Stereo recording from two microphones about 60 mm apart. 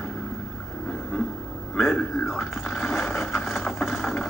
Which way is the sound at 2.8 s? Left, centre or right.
Left.